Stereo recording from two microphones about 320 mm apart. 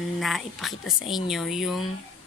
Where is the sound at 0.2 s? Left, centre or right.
Centre.